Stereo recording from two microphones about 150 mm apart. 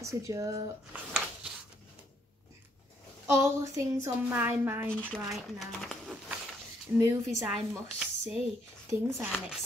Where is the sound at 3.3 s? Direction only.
20° right (ahead or behind).